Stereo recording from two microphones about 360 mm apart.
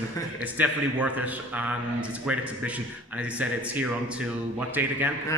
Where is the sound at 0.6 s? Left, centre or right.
Centre.